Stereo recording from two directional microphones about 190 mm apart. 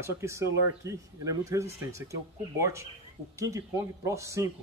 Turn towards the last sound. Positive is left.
turn(degrees=-15)  # may be behind; listen again after turning